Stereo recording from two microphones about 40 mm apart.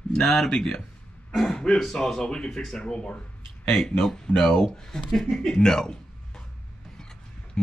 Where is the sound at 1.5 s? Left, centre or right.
Centre.